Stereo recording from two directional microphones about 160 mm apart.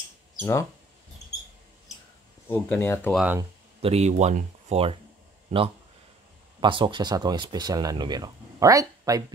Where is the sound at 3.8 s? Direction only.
40° right (ahead or behind).